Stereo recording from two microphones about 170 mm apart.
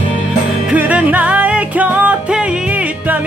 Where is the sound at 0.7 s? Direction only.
10° right (ahead or behind).